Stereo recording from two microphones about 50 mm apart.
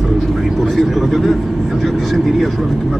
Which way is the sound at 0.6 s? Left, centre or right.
Centre.